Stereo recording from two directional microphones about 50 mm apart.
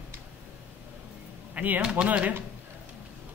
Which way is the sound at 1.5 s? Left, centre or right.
Right.